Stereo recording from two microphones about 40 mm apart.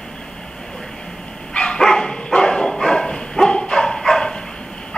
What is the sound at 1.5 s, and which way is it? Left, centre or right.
Dog, left.